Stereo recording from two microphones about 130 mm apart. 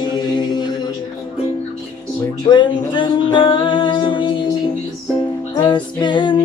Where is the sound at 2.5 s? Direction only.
40° left (ahead or behind).